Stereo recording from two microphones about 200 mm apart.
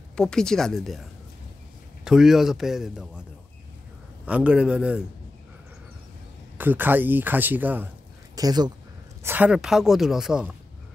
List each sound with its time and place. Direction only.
0.1 s a woman's voice: 5° left (ahead or behind)
2.0 s a woman's voice: centre (ahead or behind)
4.3 s a woman's voice: 5° right (ahead or behind)
6.6 s speech: 10° right (ahead or behind)
8.4 s speech: 20° right (ahead or behind)
9.2 s a woman's voice: 10° right (ahead or behind)